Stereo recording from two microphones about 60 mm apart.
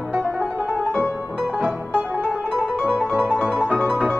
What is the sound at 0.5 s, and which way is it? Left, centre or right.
Music, right.